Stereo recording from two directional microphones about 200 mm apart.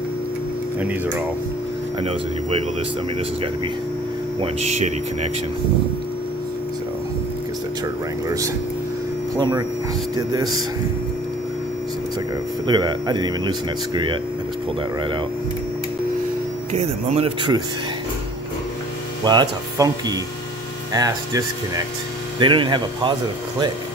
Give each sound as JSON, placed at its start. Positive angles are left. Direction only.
{"t": 4.4, "sound": "speech", "side_deg": -35}
{"t": 9.4, "sound": "speech", "side_deg": -20}
{"t": 12.6, "sound": "speech", "side_deg": -20}
{"t": 16.7, "sound": "speech", "side_deg": -30}
{"t": 19.2, "sound": "speech", "side_deg": -20}